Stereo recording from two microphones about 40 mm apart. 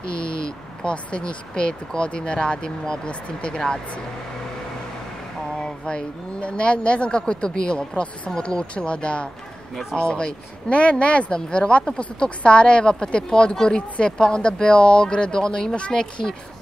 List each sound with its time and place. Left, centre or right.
0.8 s speech: left
5.6 s speech: left